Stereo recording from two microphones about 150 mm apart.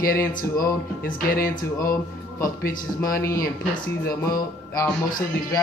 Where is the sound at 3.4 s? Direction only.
75° left (ahead or behind).